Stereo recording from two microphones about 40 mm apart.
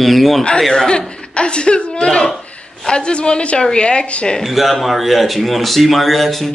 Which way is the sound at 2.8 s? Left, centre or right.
Left.